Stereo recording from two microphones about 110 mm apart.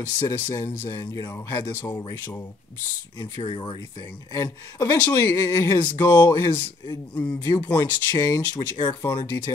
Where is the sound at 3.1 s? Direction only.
35° left (ahead or behind).